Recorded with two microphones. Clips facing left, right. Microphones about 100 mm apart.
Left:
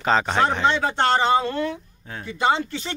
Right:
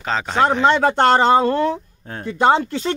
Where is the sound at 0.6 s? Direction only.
50° right (ahead or behind).